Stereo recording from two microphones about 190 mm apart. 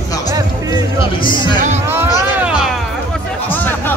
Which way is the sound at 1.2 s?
25° left (ahead or behind).